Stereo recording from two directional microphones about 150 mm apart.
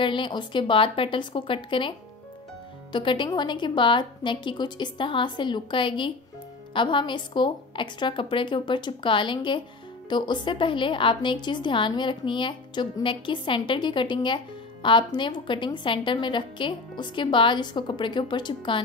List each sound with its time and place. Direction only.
0.0 s a woman's voice: 35° left (ahead or behind)